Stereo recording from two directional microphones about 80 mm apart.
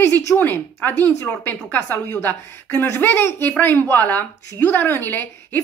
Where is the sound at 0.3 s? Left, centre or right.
Left.